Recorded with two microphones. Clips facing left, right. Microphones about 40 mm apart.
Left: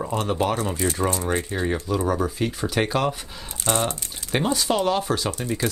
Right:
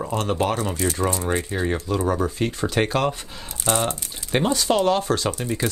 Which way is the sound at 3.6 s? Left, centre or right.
Right.